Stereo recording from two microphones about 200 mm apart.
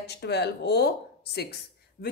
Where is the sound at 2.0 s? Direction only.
50° left (ahead or behind).